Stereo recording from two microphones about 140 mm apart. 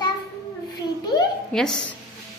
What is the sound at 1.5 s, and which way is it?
Speech, 5° left (ahead or behind).